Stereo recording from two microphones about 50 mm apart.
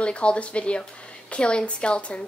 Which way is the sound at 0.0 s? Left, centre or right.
Left.